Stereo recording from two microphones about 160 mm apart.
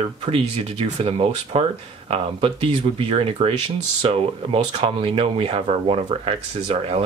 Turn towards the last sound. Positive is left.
turn(degrees=-35)  # may be behind; listen again after turning